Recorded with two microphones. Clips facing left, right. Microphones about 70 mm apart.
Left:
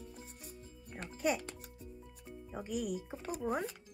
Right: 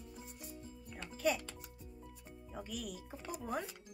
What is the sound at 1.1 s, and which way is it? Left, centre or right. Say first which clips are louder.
Speech: left 1 dB; centre.